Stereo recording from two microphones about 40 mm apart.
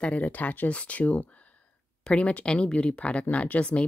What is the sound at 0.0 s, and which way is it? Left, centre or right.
Speech, left.